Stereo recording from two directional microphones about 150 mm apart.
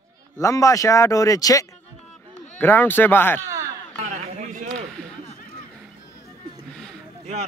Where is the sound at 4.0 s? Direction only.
50° right (ahead or behind).